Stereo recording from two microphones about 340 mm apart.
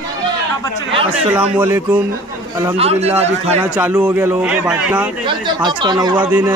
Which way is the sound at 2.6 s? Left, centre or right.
Centre.